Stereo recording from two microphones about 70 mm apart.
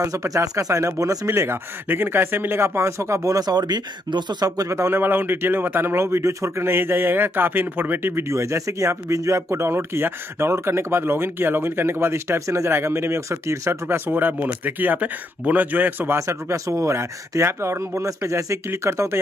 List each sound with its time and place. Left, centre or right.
0.0 s speech: right
4.7 s a man's voice: right
16.2 s speech: right